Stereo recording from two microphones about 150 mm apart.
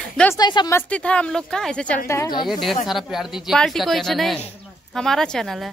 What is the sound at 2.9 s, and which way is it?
Speech, centre (ahead or behind).